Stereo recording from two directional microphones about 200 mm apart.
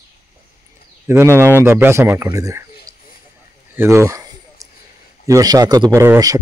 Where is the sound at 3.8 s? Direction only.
15° right (ahead or behind).